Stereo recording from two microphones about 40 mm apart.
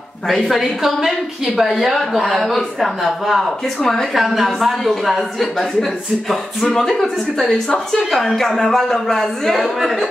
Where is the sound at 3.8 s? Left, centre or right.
Centre.